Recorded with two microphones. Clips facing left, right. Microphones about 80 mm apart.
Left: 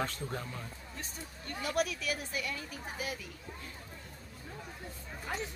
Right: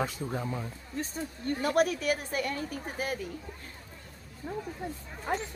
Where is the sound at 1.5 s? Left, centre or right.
Right.